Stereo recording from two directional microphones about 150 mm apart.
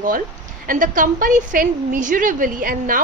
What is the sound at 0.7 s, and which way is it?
A woman's voice, 60° right (ahead or behind).